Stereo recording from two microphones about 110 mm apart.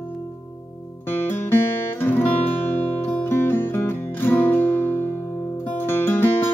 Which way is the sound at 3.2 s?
20° left (ahead or behind).